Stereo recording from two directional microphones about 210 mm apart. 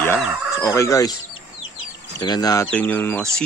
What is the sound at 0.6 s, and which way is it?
Speech, 15° left (ahead or behind).